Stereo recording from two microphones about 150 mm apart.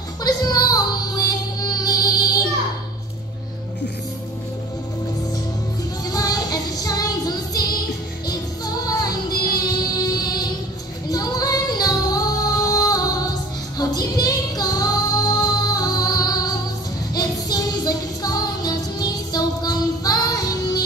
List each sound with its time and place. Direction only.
0.2 s music: 25° left (ahead or behind)
6.0 s music: 25° left (ahead or behind)
11.1 s female singing: 25° left (ahead or behind)
17.1 s music: 25° left (ahead or behind)